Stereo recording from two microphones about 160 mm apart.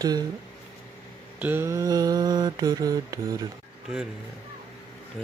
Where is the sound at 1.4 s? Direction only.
15° right (ahead or behind).